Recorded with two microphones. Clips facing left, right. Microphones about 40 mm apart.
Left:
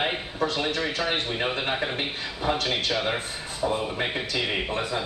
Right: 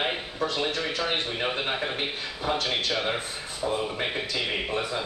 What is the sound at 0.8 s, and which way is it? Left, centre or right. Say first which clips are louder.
Speech: left 2 dB; left.